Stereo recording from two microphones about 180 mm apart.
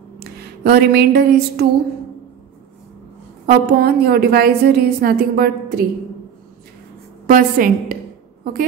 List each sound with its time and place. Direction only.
0.2 s a sound: 60° right (ahead or behind)
3.4 s a woman's voice: 55° right (ahead or behind)
7.2 s a woman's voice: 50° right (ahead or behind)